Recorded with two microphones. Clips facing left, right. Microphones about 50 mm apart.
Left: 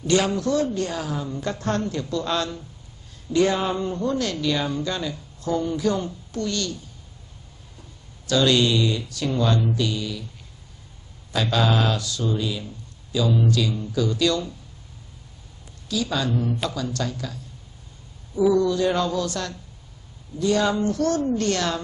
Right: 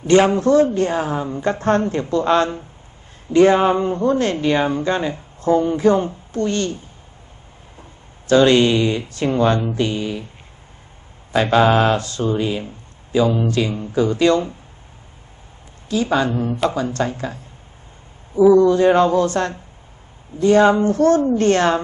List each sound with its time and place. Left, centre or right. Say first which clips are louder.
0.0 s speech: right 8 dB; right
8.3 s speech: right 7 dB; right
11.3 s speech: right 8 dB; right
15.9 s speech: right 6 dB; right